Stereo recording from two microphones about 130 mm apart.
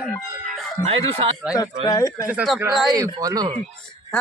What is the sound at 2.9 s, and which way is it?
Speech, 30° right (ahead or behind).